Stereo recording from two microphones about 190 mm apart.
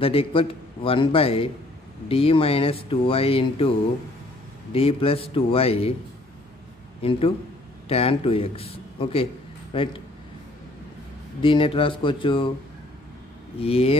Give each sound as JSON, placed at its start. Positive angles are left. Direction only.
{"t": 0.0, "sound": "speech", "side_deg": 30}
{"t": 4.7, "sound": "speech", "side_deg": 30}
{"t": 7.0, "sound": "speech", "side_deg": 30}
{"t": 11.4, "sound": "speech", "side_deg": 25}
{"t": 13.6, "sound": "speech", "side_deg": 30}